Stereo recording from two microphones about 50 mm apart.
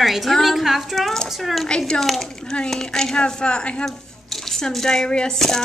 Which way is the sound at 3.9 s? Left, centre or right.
Centre.